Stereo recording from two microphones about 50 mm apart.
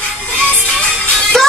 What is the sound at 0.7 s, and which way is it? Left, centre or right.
Music, centre.